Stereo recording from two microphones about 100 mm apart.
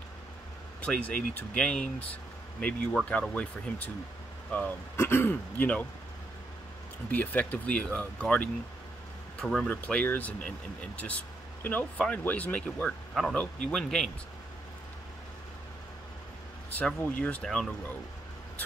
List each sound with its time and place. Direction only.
0.8 s speech: 15° left (ahead or behind)
7.1 s speech: 15° left (ahead or behind)
11.6 s speech: 15° left (ahead or behind)
16.7 s speech: 15° left (ahead or behind)